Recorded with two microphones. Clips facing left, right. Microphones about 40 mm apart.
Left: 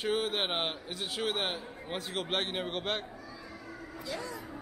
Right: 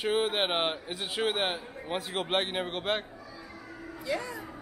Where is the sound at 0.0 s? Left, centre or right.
Centre.